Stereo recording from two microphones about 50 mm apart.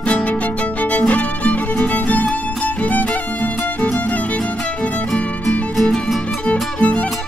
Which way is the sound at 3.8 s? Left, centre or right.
Centre.